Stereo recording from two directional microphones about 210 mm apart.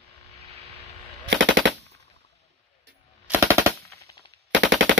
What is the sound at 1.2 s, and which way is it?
Machine gun, 60° right (ahead or behind).